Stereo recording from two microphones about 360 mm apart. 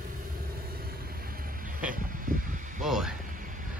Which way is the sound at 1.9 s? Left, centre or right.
Right.